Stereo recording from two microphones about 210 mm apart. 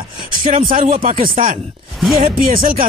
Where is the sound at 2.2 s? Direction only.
40° right (ahead or behind).